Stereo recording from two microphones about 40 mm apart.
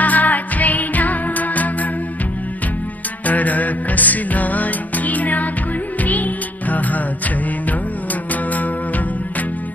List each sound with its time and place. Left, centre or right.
0.0 s music: left
3.3 s music: left